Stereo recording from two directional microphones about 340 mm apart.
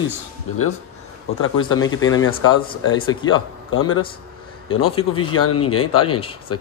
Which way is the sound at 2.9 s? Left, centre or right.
Centre.